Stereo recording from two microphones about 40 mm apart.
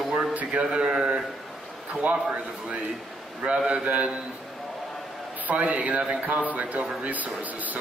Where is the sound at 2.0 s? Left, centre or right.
Right.